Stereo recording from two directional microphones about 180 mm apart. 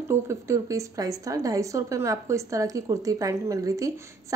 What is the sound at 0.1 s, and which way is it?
A woman's voice, 15° right (ahead or behind).